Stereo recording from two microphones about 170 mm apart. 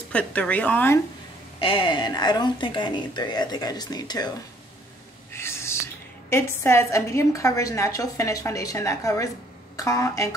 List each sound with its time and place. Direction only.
0.1 s a woman's voice: 5° left (ahead or behind)
1.6 s speech: 30° left (ahead or behind)
5.3 s whispering: 15° left (ahead or behind)
6.3 s a woman's voice: 15° left (ahead or behind)